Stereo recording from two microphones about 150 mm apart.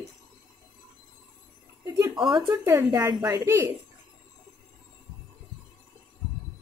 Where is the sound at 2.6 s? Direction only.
20° right (ahead or behind).